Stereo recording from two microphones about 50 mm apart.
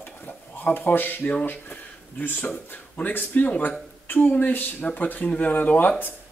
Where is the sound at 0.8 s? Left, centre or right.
Left.